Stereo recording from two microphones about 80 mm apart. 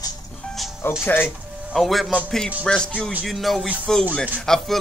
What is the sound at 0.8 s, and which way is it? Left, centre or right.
Speech, left.